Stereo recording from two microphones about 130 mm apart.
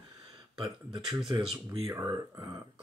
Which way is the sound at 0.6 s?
35° right (ahead or behind).